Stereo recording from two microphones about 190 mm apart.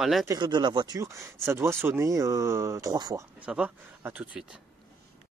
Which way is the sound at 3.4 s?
5° right (ahead or behind).